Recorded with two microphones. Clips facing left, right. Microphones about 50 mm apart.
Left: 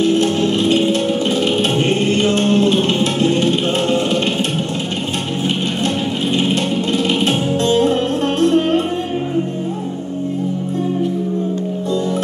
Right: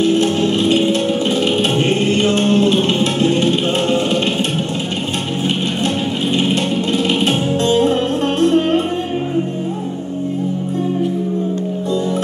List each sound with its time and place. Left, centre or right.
0.0 s music: centre
6.3 s music: centre